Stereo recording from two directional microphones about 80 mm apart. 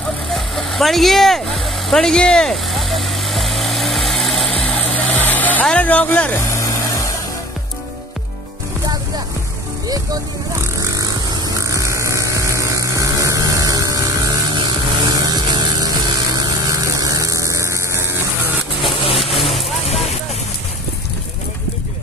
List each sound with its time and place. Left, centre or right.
0.3 s vehicle: centre
4.9 s music: centre
6.4 s vehicle: left
10.6 s hum: right
15.0 s a sound: right
16.3 s mains hum: right
18.9 s vehicle: centre